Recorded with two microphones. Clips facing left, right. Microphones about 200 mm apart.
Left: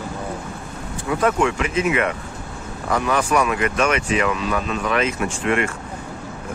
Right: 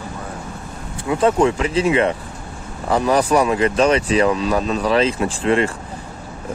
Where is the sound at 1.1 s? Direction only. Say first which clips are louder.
Right 4 dB; 25° right (ahead or behind).